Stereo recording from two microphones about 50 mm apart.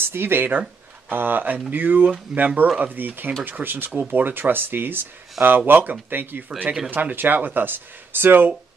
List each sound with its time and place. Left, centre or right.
0.0 s speech: right